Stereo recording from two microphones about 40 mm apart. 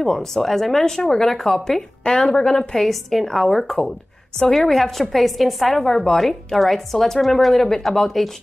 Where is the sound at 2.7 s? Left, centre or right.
Centre.